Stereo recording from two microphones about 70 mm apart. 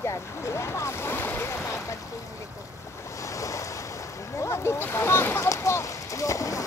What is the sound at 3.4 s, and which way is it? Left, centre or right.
Waves, left.